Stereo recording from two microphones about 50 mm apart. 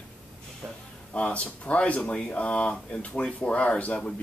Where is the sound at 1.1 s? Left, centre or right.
Left.